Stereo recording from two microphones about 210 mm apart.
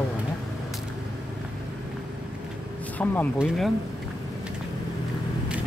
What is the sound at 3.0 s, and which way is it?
Speech, 5° left (ahead or behind).